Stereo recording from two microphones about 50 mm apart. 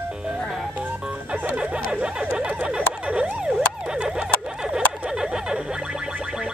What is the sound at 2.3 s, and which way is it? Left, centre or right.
Emergency vehicle, centre.